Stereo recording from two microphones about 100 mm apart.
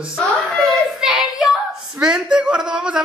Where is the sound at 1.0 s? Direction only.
5° right (ahead or behind).